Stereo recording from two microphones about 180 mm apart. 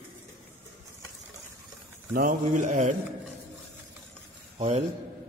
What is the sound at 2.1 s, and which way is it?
Mantra, 45° right (ahead or behind).